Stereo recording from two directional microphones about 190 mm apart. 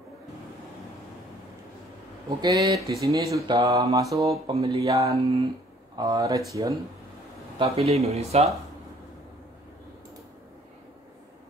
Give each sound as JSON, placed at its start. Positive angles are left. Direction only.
{"t": 2.2, "sound": "speech", "side_deg": -20}
{"t": 4.3, "sound": "speech", "side_deg": -30}
{"t": 5.9, "sound": "speech", "side_deg": -20}
{"t": 7.5, "sound": "speech", "side_deg": -30}